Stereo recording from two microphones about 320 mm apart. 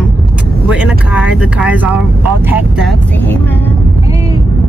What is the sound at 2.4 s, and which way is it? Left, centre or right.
Speech, centre.